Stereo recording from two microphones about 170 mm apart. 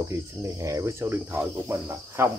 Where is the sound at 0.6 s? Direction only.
20° right (ahead or behind).